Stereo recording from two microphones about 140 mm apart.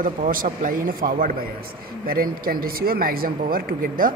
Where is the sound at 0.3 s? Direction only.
85° right.